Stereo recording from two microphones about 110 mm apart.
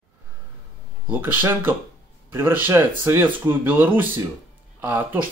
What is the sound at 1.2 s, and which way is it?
Speech, 20° right (ahead or behind).